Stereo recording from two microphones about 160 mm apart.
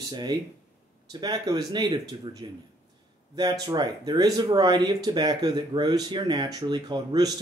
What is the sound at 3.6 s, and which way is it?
Speech, 25° right (ahead or behind).